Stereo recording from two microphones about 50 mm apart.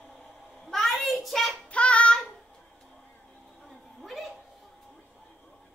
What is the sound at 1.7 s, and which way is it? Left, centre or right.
Child singing, left.